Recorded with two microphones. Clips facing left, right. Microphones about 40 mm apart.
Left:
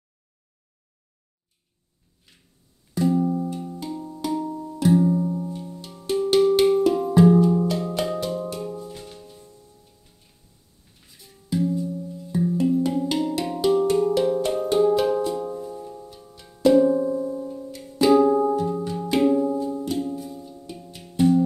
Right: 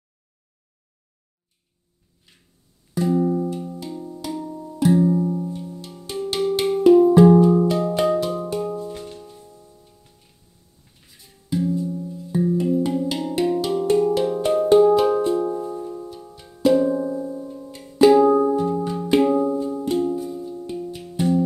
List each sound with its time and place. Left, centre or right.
2.9 s music: centre
11.5 s music: centre
15.1 s music: right
16.3 s music: centre
17.6 s music: centre
20.2 s music: centre